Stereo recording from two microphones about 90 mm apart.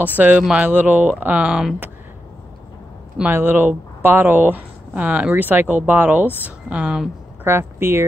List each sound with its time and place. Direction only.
0.4 s speech: 10° right (ahead or behind)
3.3 s speech: 25° right (ahead or behind)
7.4 s speech: 25° right (ahead or behind)